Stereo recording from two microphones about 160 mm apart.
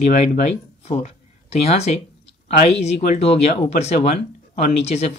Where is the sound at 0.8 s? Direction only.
45° left (ahead or behind).